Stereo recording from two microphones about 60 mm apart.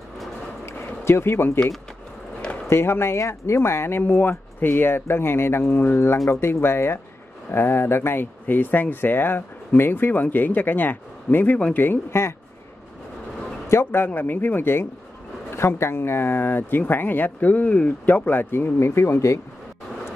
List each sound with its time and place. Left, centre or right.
0.7 s a sound: left
2.7 s speech: left
4.0 s speech: left
6.1 s speech: left
6.4 s speech: left
13.7 s speech: left